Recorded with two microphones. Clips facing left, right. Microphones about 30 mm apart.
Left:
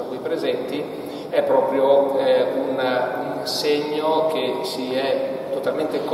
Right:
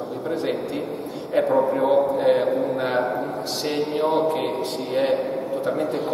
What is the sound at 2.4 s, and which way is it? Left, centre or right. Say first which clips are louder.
Speech: left 1 dB; left.